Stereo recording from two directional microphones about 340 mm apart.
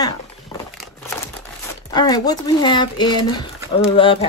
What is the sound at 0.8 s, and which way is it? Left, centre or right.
Crumpling, centre.